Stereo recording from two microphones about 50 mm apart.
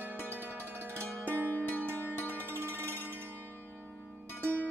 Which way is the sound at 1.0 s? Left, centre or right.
Left.